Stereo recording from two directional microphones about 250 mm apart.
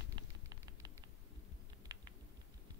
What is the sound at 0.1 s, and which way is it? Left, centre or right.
Fire, centre.